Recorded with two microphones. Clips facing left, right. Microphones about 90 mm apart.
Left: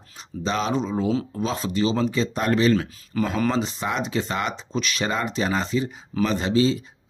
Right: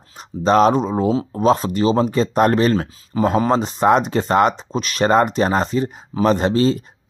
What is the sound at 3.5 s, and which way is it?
Speech, 45° right (ahead or behind).